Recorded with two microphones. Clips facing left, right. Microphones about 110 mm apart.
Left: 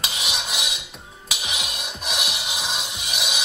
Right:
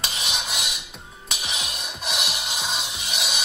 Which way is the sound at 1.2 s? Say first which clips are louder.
Left 1 dB; 5° left (ahead or behind).